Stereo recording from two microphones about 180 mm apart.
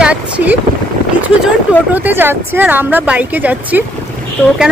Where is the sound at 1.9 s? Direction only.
10° right (ahead or behind).